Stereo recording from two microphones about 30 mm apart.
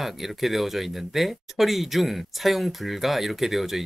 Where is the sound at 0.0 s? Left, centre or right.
Centre.